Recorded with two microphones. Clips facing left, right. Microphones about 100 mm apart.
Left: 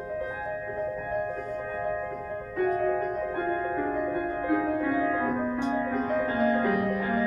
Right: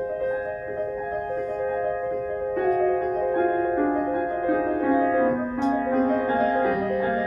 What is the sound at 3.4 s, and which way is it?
Music, 20° right (ahead or behind).